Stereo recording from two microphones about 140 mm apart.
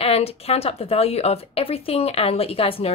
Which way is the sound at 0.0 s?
45° left (ahead or behind).